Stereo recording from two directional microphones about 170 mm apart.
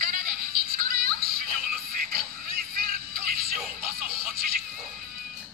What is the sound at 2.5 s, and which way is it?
Music, 60° right (ahead or behind).